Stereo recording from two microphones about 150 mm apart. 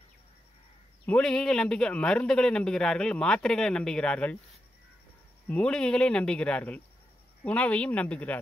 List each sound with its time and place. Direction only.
1.0 s a man's voice: 5° left (ahead or behind)
5.5 s speech: 5° left (ahead or behind)